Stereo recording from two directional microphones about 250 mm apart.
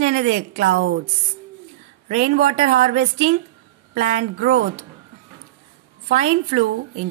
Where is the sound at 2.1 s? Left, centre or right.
Right.